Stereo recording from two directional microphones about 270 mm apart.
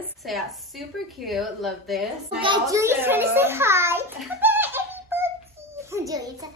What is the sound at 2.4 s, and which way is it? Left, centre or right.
A child's voice, centre.